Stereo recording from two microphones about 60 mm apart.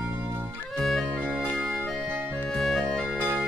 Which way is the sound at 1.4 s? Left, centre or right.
Right.